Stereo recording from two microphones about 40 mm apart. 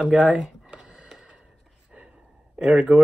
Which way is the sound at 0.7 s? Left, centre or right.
Right.